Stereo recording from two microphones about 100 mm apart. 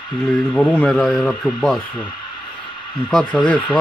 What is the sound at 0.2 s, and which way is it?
Speech, 5° left (ahead or behind).